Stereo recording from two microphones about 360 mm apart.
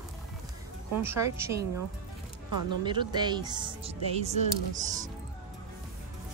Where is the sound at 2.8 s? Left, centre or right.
Centre.